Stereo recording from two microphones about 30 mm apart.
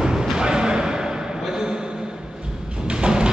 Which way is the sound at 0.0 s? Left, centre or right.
Right.